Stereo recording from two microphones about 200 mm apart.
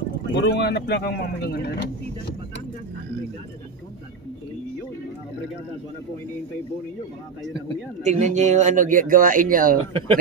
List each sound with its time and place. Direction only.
0.3 s speech: 55° left (ahead or behind)
8.0 s speech: 35° right (ahead or behind)
9.8 s speech: 25° right (ahead or behind)